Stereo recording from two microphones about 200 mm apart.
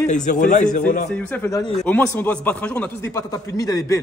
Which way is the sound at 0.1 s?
40° left (ahead or behind).